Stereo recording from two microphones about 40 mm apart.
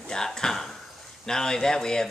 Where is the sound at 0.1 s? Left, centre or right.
Centre.